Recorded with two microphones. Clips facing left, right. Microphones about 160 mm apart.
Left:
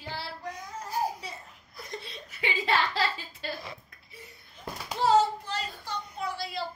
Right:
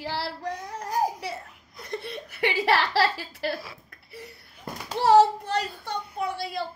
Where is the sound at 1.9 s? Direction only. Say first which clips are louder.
Right 8 dB; 60° right (ahead or behind); by 3.6 s 80° right.